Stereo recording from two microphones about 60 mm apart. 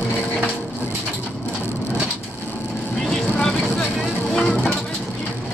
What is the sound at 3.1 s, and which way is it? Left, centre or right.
Vehicle, centre.